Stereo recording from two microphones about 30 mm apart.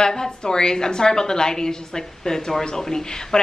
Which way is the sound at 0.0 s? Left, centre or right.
Centre.